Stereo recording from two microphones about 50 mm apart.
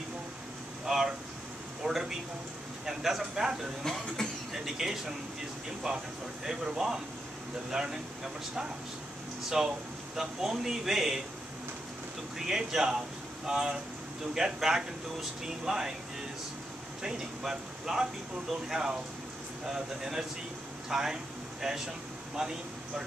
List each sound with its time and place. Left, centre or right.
0.8 s a sound: centre
2.8 s speech: centre
4.2 s speech: centre
4.6 s speech: centre
5.9 s speech: right
12.4 s speech: centre
17.0 s speech: centre